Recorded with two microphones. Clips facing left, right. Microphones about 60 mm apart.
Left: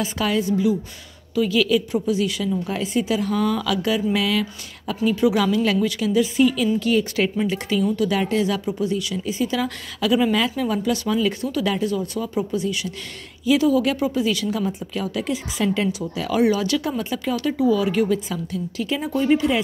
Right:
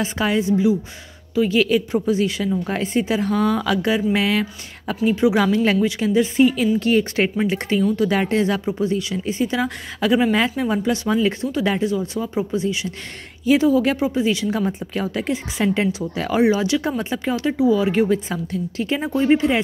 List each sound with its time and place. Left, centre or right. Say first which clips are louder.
0.0 s a woman's voice: right 2 dB; right
8.2 s a woman's voice: right 2 dB; right